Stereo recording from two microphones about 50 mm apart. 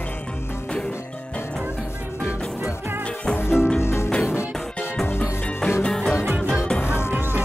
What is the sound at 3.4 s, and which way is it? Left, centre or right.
Music, left.